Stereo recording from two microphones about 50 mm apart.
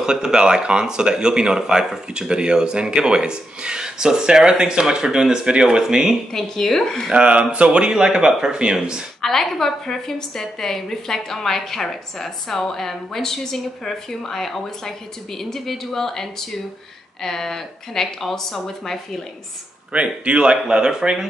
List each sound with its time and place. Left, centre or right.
0.0 s speech: centre
6.3 s a woman's voice: centre
7.1 s speech: right
9.2 s a woman's voice: centre
19.9 s speech: right